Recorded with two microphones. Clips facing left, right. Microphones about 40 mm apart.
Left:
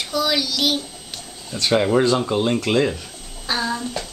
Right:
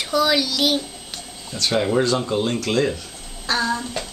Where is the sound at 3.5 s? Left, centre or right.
Centre.